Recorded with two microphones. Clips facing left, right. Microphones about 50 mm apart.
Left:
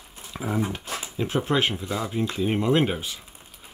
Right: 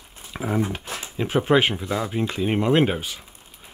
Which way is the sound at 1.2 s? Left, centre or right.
Centre.